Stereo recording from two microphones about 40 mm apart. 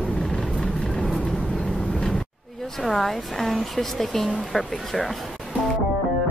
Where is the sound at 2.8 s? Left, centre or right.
Centre.